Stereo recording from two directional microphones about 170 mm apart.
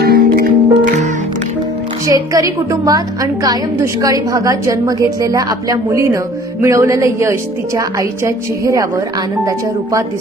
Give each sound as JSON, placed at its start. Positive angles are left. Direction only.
{"t": 0.0, "sound": "music", "side_deg": -60}
{"t": 2.0, "sound": "a woman's voice", "side_deg": -20}